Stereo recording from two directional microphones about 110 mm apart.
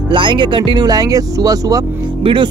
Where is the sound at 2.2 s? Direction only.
50° right (ahead or behind).